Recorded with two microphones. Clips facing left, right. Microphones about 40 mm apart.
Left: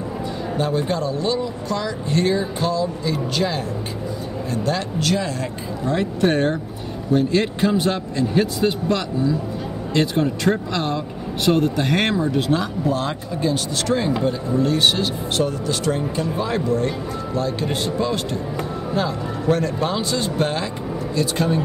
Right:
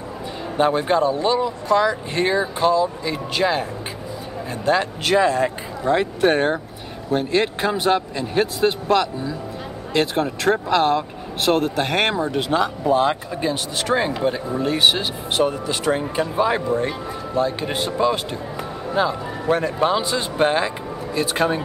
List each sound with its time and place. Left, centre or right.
0.6 s speech: right
4.6 s speech: right
8.8 s speech: centre
10.5 s speech: centre